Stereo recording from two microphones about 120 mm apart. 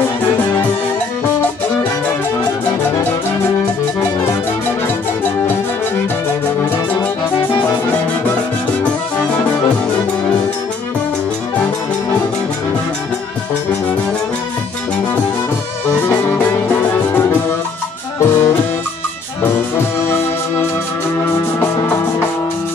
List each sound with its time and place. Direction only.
15.9 s music: 15° left (ahead or behind)